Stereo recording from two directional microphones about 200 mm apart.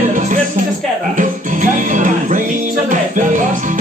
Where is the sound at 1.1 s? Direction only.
40° right (ahead or behind).